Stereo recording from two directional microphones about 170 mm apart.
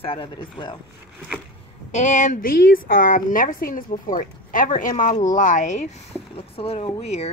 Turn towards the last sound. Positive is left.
turn(degrees=40)  # may be behind; listen again after turning